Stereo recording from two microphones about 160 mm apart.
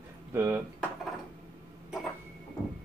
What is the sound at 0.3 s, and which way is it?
Speech, 15° right (ahead or behind).